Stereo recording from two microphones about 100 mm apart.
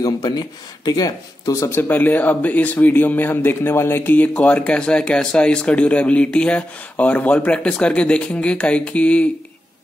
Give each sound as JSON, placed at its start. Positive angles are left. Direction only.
{"t": 0.0, "sound": "speech", "side_deg": 40}
{"t": 1.7, "sound": "speech", "side_deg": 20}